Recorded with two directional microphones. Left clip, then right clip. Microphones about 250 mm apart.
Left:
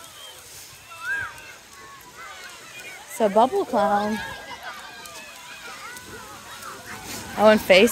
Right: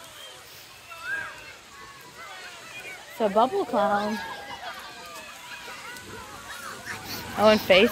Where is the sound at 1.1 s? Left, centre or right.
Left.